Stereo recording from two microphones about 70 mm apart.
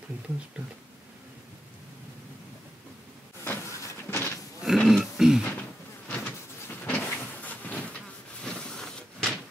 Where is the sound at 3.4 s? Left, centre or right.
Left.